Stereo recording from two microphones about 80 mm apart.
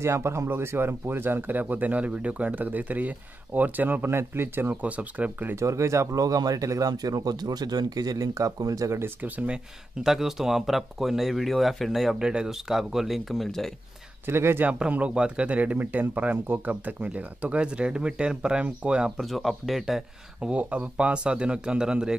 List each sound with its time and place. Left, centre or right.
0.0 s speech: right
5.6 s speech: right
10.0 s speech: centre
14.2 s speech: right
14.7 s speech: centre
19.1 s speech: centre
20.4 s speech: centre